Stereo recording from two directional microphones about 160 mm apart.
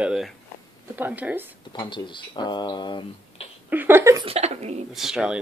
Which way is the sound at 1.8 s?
30° left (ahead or behind).